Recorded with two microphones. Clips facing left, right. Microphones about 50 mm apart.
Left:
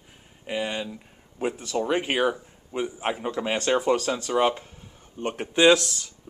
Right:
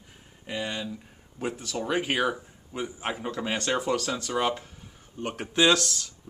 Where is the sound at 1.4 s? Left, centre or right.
Centre.